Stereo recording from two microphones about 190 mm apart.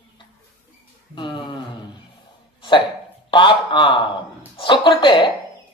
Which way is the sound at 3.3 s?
25° left (ahead or behind).